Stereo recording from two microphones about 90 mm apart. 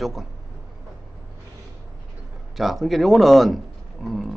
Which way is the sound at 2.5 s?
Centre (ahead or behind).